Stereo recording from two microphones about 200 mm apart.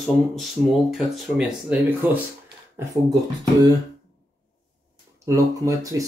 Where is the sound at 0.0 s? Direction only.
Centre (ahead or behind).